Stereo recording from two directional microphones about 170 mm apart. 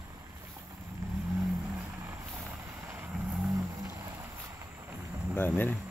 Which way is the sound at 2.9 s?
5° right (ahead or behind).